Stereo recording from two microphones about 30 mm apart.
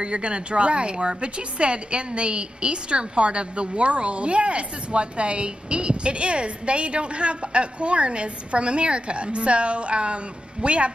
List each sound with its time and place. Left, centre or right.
0.0 s a woman's voice: right